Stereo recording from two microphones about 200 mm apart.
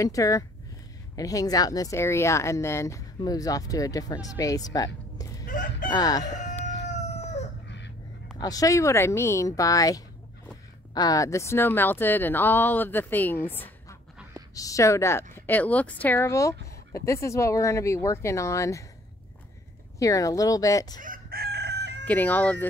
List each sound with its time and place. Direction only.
0.0 s speech: 15° left (ahead or behind)
5.5 s speech: 40° left (ahead or behind)
5.9 s crowing: 20° left (ahead or behind)
6.9 s chicken: 35° left (ahead or behind)
7.6 s a sound: 60° left (ahead or behind)
8.4 s speech: 20° left (ahead or behind)
20.0 s speech: 15° left (ahead or behind)
21.0 s chicken: 45° right (ahead or behind)
22.0 s speech: 10° left (ahead or behind)